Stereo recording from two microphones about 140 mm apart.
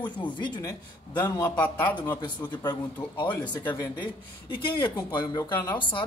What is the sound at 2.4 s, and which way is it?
A man's voice, 35° left (ahead or behind).